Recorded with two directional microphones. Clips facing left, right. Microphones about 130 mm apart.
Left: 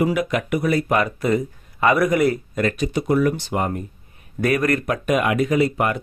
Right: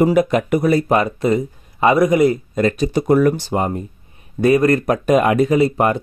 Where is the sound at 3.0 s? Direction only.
45° right (ahead or behind).